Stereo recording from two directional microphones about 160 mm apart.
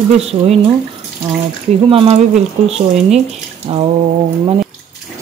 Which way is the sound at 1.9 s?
35° right (ahead or behind).